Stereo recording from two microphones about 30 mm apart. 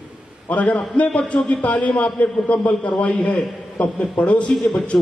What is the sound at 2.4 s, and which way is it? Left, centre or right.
A man's voice, left.